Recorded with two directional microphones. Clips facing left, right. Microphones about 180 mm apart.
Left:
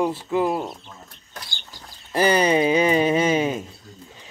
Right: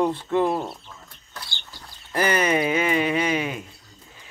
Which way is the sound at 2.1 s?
30° left (ahead or behind).